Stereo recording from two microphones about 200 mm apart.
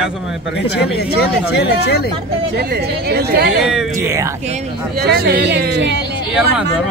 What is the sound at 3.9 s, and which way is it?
Speech, 15° right (ahead or behind).